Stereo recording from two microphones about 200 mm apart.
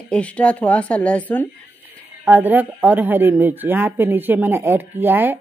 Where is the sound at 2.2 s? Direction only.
10° right (ahead or behind).